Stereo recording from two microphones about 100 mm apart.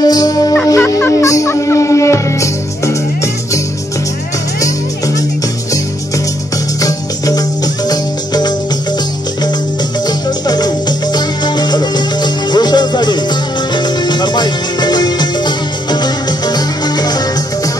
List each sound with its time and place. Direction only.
0.0 s fowl: 40° left (ahead or behind)
0.7 s music: 30° left (ahead or behind)
4.6 s music: 35° left (ahead or behind)
6.8 s music: 35° left (ahead or behind)
10.0 s music: 40° left (ahead or behind)